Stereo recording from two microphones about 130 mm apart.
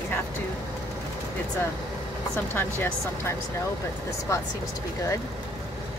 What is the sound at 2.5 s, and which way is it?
Speech, 15° left (ahead or behind).